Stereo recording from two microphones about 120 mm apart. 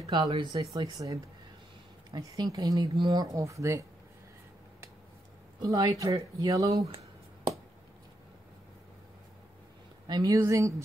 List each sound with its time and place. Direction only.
0.0 s speech: 30° right (ahead or behind)
5.6 s speech: 30° right (ahead or behind)
10.0 s speech: 35° right (ahead or behind)